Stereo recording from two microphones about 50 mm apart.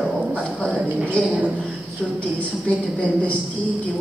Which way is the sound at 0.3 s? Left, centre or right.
Left.